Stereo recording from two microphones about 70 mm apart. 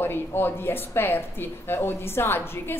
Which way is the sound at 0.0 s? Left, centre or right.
Left.